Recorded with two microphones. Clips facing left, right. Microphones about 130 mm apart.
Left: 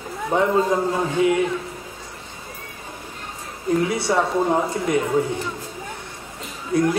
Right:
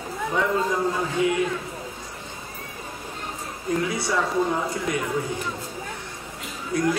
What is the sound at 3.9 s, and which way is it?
Speech, 25° left (ahead or behind).